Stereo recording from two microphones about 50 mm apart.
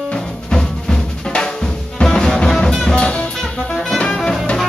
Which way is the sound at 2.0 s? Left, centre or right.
Centre.